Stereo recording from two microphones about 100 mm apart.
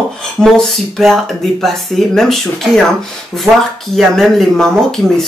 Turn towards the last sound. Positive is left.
turn(degrees=5)  # may be behind; listen again after turning